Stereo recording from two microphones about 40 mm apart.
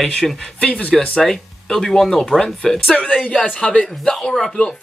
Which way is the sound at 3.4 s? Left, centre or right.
Left.